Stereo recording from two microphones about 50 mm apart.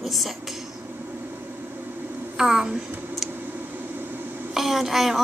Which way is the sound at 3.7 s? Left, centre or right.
Right.